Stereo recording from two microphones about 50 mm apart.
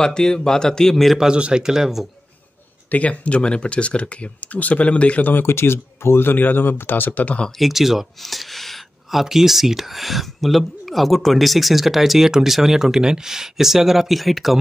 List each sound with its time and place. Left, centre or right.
0.0 s a man's voice: centre
1.1 s speech: centre
2.9 s speech: left
5.3 s speech: left
7.5 s speech: centre